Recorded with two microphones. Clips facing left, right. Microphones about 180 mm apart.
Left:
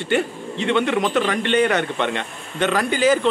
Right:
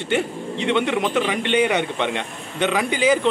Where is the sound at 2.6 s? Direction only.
Centre (ahead or behind).